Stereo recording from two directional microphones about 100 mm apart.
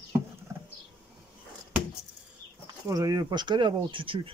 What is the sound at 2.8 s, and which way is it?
Speech, 35° right (ahead or behind).